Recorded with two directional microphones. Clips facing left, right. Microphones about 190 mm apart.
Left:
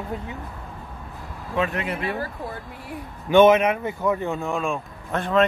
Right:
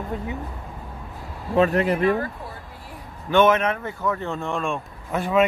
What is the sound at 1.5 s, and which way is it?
Speech, 40° right (ahead or behind).